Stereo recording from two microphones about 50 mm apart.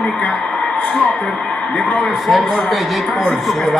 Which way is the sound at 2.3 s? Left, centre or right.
Centre.